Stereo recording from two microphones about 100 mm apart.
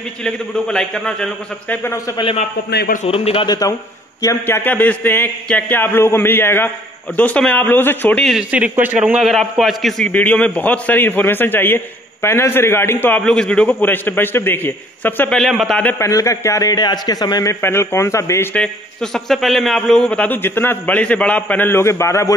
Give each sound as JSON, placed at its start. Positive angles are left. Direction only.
{"t": 0.2, "sound": "a man's voice", "side_deg": 10}
{"t": 1.8, "sound": "a man's voice", "side_deg": 25}
{"t": 3.1, "sound": "a man's voice", "side_deg": 65}
{"t": 3.4, "sound": "a man's voice", "side_deg": 35}
{"t": 4.5, "sound": "a man's voice", "side_deg": 20}
{"t": 8.4, "sound": "a man's voice", "side_deg": -15}
{"t": 10.0, "sound": "a man's voice", "side_deg": 15}
{"t": 13.2, "sound": "a man's voice", "side_deg": 10}
{"t": 15.3, "sound": "a man's voice", "side_deg": 0}
{"t": 16.0, "sound": "a man's voice", "side_deg": 30}
{"t": 17.5, "sound": "a man's voice", "side_deg": 25}
{"t": 18.5, "sound": "a man's voice", "side_deg": 10}
{"t": 20.4, "sound": "a man's voice", "side_deg": 20}